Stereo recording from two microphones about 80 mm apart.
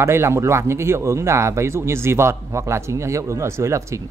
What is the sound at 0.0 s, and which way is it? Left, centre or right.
Speech, right.